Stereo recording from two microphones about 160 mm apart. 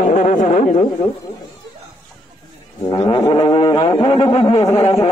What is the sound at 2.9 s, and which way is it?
Brass instrument, 30° left (ahead or behind).